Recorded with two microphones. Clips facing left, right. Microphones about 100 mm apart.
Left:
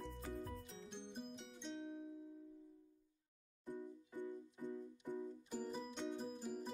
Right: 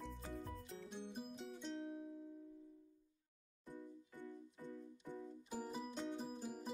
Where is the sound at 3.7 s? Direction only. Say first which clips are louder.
Left 5 dB; 15° left (ahead or behind).